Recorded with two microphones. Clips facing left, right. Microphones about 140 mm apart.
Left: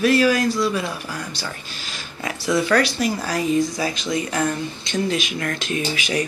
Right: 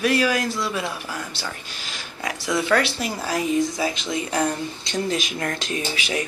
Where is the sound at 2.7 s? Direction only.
20° right (ahead or behind).